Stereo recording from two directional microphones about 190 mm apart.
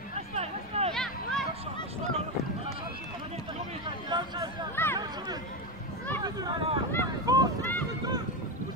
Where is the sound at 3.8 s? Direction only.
25° right (ahead or behind).